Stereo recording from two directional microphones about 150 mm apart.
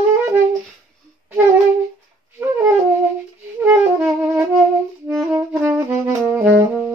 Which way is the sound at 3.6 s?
10° right (ahead or behind).